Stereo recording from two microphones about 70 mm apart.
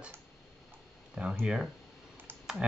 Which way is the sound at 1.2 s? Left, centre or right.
Centre.